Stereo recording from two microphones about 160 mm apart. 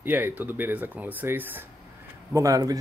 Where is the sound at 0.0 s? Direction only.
10° right (ahead or behind).